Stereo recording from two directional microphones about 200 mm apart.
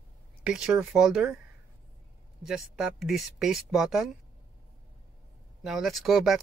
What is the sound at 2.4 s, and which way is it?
Speech, centre (ahead or behind).